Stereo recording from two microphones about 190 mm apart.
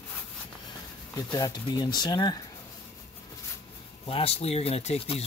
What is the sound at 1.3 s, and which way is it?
Speech, 20° left (ahead or behind).